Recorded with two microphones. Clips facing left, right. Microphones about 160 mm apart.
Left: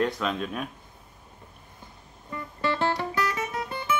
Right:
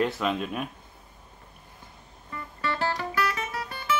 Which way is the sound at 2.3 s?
25° left (ahead or behind).